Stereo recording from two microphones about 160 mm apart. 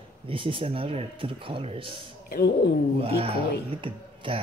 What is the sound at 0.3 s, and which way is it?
Speech, 35° right (ahead or behind).